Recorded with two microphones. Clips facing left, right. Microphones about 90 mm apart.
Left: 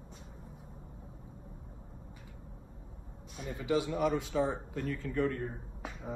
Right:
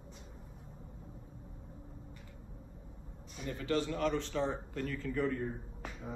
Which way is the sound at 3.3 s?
10° left (ahead or behind).